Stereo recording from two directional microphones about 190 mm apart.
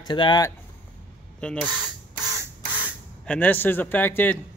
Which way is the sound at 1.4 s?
5° left (ahead or behind).